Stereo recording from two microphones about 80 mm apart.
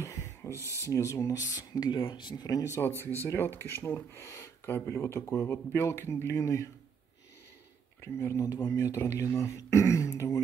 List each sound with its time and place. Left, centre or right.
0.0 s speech: left
2.7 s speech: left
8.0 s speech: left
8.9 s speech: left